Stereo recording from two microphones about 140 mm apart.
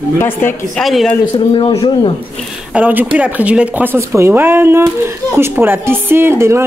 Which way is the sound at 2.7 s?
10° right (ahead or behind).